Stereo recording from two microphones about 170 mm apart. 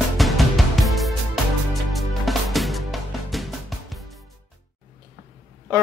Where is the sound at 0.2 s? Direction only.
Centre (ahead or behind).